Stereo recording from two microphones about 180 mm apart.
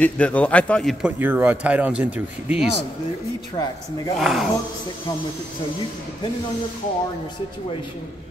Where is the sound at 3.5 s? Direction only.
25° left (ahead or behind).